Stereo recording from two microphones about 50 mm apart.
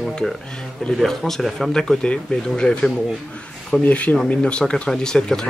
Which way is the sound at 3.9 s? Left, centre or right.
Left.